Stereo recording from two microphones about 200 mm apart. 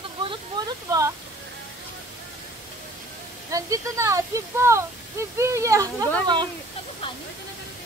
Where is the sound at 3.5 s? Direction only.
15° right (ahead or behind).